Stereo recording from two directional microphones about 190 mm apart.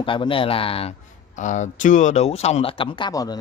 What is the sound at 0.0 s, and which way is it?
Speech, 25° left (ahead or behind).